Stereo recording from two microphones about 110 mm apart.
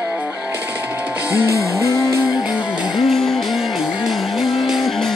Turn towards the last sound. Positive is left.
turn(degrees=0)  # may be behind; listen again after turning